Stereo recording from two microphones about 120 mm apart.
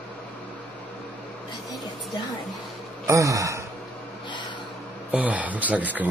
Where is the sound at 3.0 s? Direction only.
25° right (ahead or behind).